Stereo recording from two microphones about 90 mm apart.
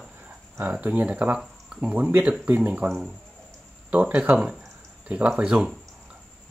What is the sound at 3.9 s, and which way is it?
Speech, 15° right (ahead or behind).